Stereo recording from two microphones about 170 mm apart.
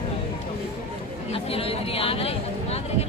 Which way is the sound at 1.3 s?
35° left (ahead or behind).